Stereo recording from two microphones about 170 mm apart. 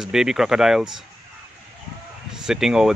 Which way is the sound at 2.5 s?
5° right (ahead or behind).